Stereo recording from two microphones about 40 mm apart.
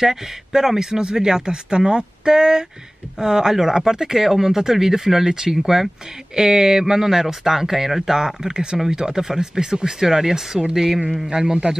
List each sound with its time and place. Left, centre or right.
0.0 s a man's voice: centre